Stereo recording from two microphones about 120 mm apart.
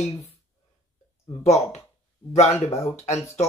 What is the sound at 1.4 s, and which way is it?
Speech, 65° left (ahead or behind).